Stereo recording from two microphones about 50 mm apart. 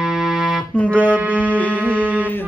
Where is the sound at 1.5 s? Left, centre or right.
Left.